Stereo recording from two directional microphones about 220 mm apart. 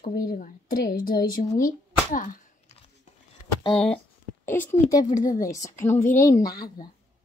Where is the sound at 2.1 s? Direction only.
35° left (ahead or behind).